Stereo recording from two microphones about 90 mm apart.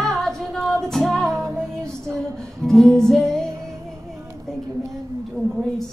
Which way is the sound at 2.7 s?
5° left (ahead or behind).